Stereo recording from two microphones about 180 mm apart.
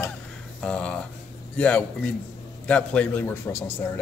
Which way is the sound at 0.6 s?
5° left (ahead or behind).